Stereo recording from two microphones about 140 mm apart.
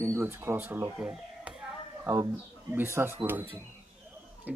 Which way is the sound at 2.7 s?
15° right (ahead or behind).